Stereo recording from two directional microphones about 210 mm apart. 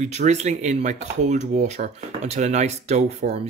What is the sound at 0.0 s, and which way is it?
Speech, 35° right (ahead or behind).